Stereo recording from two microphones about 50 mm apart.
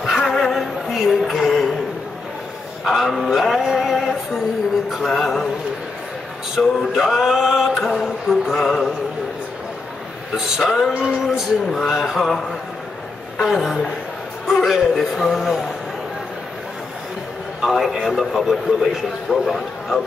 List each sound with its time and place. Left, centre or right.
0.0 s music: centre
0.6 s a sound: centre
2.8 s speech: centre
3.7 s a sound: centre
5.0 s speech: centre
6.6 s speech: centre
7.7 s a sound: centre
8.6 s speech: centre
10.3 s speech: centre
11.2 s speech: centre
13.5 s speech: centre
17.6 s a sound: centre
18.0 s speech: centre
19.2 s speech: centre